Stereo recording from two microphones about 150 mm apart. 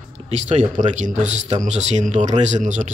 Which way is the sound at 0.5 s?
55° right (ahead or behind).